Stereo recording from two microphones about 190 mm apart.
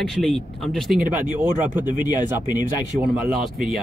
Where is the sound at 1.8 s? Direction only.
20° left (ahead or behind).